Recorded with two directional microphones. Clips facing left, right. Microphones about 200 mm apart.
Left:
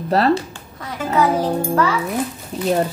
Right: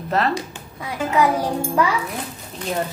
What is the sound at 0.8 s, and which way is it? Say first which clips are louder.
Speech: left 1 dB; 15° right (ahead or behind).